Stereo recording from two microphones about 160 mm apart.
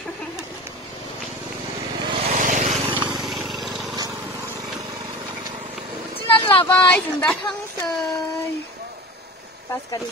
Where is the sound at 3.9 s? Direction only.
20° right (ahead or behind).